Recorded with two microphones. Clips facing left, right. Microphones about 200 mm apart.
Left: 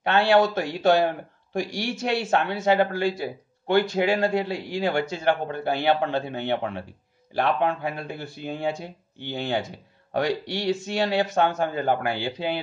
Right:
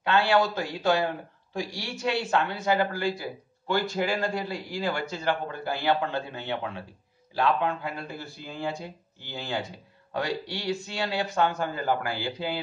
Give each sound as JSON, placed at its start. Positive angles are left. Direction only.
{"t": 0.0, "sound": "speech", "side_deg": 65}